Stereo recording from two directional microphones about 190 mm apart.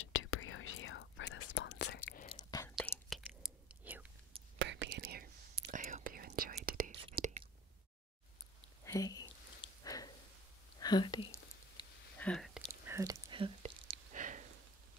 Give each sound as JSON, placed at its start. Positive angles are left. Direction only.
{"t": 0.0, "sound": "whispering", "side_deg": 90}
{"t": 2.3, "sound": "whispering", "side_deg": 20}
{"t": 2.7, "sound": "whispering", "side_deg": 5}
{"t": 3.8, "sound": "whispering", "side_deg": -10}
{"t": 4.6, "sound": "whispering", "side_deg": -65}
{"t": 7.0, "sound": "whispering", "side_deg": -30}
{"t": 8.8, "sound": "a sound", "side_deg": 15}
{"t": 9.6, "sound": "sniff", "side_deg": 20}
{"t": 10.8, "sound": "a sound", "side_deg": 20}
{"t": 12.2, "sound": "a sound", "side_deg": 5}
{"t": 12.8, "sound": "whispering", "side_deg": -15}
{"t": 14.1, "sound": "a sound", "side_deg": -40}